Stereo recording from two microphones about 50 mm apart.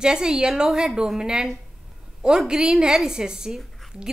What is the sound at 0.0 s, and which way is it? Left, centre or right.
A woman's voice, centre.